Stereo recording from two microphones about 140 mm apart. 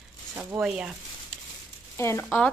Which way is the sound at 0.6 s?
5° right (ahead or behind).